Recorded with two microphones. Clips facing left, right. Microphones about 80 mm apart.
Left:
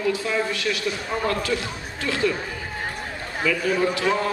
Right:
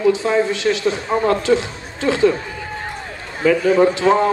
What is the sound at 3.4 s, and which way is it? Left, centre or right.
Speech, right.